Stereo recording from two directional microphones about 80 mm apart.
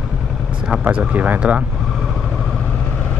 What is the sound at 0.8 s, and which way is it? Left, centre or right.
Speech, centre.